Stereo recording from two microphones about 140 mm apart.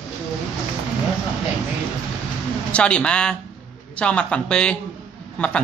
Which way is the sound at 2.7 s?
5° left (ahead or behind).